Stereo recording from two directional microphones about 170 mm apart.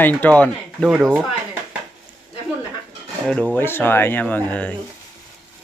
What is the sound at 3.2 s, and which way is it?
Dishes, 10° left (ahead or behind).